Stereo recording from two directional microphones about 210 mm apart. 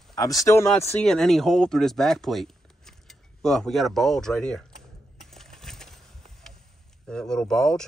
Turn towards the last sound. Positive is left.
turn(degrees=5)  # may be behind; listen again after turning